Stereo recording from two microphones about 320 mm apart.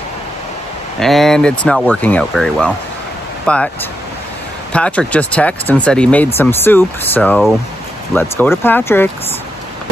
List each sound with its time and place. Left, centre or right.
0.9 s speech: centre
4.7 s speech: centre